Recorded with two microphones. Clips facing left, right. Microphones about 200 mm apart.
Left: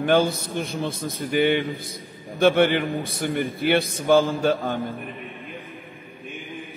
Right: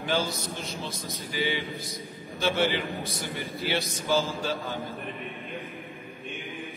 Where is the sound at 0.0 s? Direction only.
55° left (ahead or behind).